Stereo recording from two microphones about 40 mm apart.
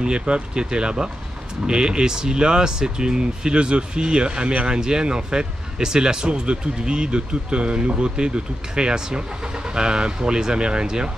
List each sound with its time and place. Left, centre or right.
0.0 s speech: right
8.7 s speech: right